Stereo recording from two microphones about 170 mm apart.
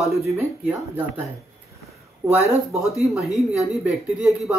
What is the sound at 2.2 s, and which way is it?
Speech, 15° right (ahead or behind).